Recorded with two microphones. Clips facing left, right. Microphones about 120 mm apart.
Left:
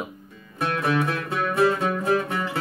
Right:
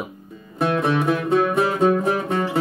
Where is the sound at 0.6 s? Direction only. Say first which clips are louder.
Right 4 dB; 25° right (ahead or behind).